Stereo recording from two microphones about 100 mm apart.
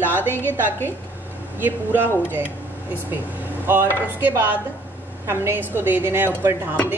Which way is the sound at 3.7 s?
20° right (ahead or behind).